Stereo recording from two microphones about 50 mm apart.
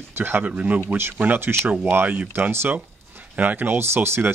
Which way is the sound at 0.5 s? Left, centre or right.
Right.